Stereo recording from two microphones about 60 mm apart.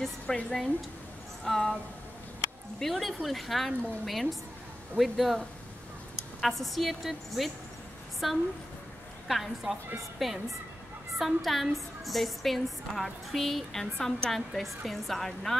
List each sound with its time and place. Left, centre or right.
0.0 s a woman's voice: centre
2.8 s a woman's voice: centre
6.4 s a woman's voice: centre